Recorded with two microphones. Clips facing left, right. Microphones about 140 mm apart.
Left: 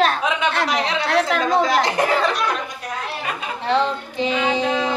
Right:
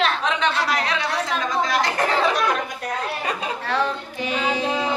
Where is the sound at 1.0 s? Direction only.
70° left (ahead or behind).